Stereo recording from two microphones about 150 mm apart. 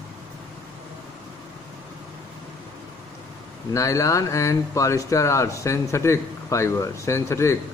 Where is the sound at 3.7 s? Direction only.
20° left (ahead or behind).